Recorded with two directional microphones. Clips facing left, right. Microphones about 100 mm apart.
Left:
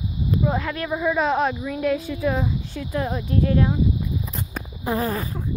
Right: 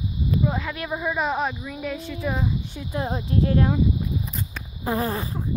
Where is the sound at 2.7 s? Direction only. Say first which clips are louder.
Left 2 dB; 25° right (ahead or behind).